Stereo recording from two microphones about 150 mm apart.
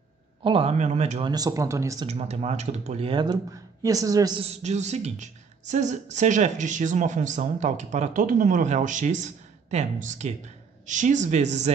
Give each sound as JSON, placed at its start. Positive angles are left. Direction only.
{"t": 0.4, "sound": "a woman's voice", "side_deg": -35}
{"t": 1.2, "sound": "speech", "side_deg": -25}
{"t": 2.0, "sound": "a woman's voice", "side_deg": -45}
{"t": 3.8, "sound": "speech", "side_deg": -25}
{"t": 4.4, "sound": "a woman's voice", "side_deg": -45}